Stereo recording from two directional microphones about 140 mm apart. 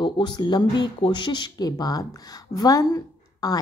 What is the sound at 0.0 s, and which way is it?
Speech, 30° left (ahead or behind).